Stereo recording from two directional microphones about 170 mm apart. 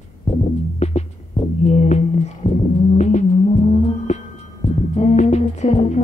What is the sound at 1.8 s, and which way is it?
Music, 40° left (ahead or behind).